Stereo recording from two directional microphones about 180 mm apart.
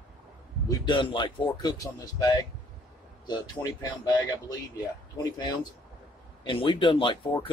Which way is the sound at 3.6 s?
15° left (ahead or behind).